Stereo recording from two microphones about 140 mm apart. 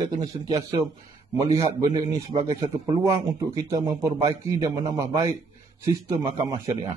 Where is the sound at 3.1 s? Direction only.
20° right (ahead or behind).